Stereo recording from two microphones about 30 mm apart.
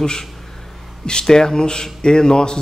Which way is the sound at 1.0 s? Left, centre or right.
Left.